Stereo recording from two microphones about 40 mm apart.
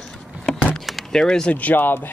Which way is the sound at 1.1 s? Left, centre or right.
Centre.